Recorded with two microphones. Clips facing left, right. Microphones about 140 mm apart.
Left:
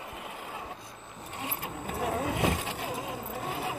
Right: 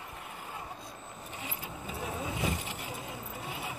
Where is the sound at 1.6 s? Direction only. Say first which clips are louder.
Left 8 dB; 70° left (ahead or behind); by 2.9 s 85° left.